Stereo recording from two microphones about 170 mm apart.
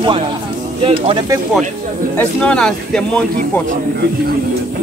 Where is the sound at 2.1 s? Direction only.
10° left (ahead or behind).